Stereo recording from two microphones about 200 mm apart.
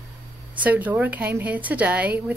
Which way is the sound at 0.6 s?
10° right (ahead or behind).